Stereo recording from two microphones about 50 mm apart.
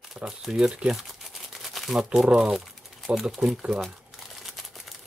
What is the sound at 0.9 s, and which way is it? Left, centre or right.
Crumpling, centre.